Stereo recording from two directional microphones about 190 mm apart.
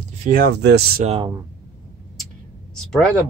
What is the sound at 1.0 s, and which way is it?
Speech, 35° right (ahead or behind).